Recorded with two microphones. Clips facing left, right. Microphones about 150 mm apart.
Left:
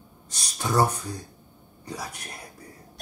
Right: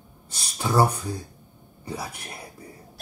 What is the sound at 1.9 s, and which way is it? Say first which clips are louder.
Speech: right 2 dB; 30° right (ahead or behind).